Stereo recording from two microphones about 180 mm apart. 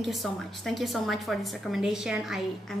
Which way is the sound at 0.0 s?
Centre (ahead or behind).